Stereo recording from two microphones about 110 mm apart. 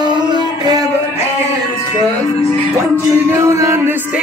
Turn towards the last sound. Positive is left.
turn(degrees=-25)  # may be behind; listen again after turning